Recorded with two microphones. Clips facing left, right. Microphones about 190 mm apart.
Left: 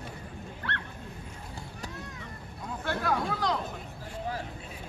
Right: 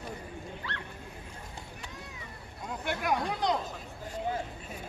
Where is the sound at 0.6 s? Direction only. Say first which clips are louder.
Left 7 dB; 65° left (ahead or behind).